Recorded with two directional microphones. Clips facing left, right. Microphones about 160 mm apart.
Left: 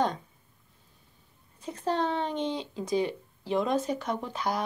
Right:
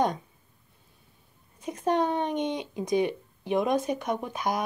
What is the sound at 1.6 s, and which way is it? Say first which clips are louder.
Speech: right 3 dB; 15° right (ahead or behind).